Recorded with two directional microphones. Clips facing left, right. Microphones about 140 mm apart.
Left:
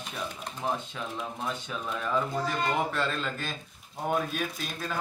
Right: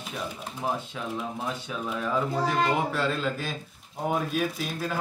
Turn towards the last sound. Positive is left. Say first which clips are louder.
# right 5 dB
turn(degrees=-5)  # may be behind; listen again after turning